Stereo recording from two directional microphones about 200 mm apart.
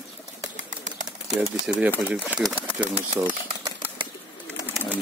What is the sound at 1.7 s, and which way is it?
Speech, centre (ahead or behind).